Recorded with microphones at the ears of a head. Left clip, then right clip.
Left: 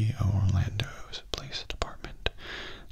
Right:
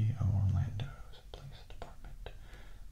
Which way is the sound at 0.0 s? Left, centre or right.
Left.